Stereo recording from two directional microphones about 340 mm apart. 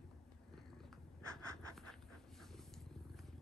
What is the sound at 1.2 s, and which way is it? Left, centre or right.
Writing, centre.